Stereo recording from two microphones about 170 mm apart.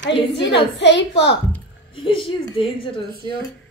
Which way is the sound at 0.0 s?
90° left.